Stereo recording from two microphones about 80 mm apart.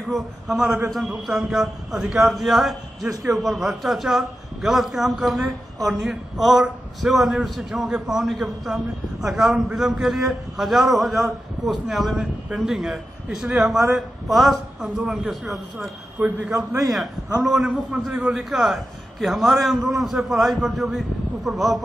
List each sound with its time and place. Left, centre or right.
0.1 s a man's voice: centre
16.2 s a man's voice: centre
16.5 s a man's voice: right
17.4 s a man's voice: centre